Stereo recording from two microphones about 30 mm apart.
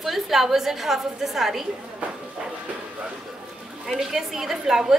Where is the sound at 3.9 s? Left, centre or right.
Centre.